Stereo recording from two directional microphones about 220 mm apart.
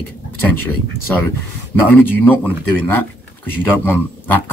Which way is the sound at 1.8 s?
10° left (ahead or behind).